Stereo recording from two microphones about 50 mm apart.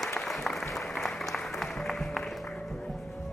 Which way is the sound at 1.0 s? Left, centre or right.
Centre.